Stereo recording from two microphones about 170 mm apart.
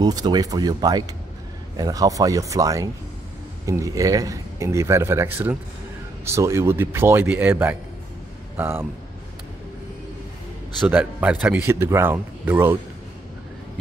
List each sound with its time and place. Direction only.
0.0 s speech: 25° right (ahead or behind)
10.9 s speech: 10° right (ahead or behind)